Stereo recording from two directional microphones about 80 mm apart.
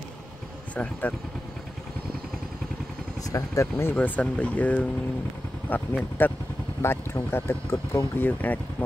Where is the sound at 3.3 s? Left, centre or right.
Left.